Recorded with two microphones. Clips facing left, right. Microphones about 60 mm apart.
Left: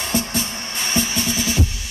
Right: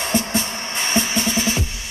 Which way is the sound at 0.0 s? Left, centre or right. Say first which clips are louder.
Right 2 dB; right.